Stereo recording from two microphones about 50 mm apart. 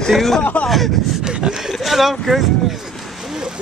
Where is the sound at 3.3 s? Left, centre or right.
Centre.